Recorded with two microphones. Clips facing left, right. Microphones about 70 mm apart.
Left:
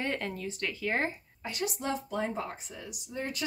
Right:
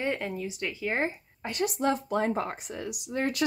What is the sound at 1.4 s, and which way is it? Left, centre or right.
Speech, right.